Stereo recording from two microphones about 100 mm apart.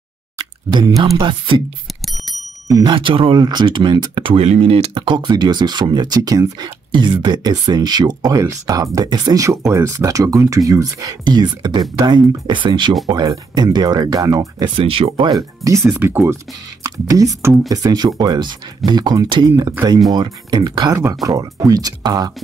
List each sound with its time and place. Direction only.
0.4 s plop: 40° right (ahead or behind)
2.0 s bicycle bell: centre (ahead or behind)
2.7 s speech: 50° right (ahead or behind); by 4.9 s 85° right
4.9 s speech: 50° right (ahead or behind)
6.9 s speech: 50° right (ahead or behind)
14.8 s speech: 70° right (ahead or behind)
15.3 s speech: 35° right (ahead or behind)
15.9 s speech: 20° right (ahead or behind)
16.8 s speech: 35° right (ahead or behind)
17.6 s speech: 40° right (ahead or behind)
20.9 s speech: 35° right (ahead or behind)